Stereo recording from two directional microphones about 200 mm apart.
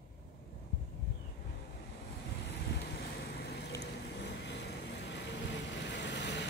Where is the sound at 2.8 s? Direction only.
55° left (ahead or behind).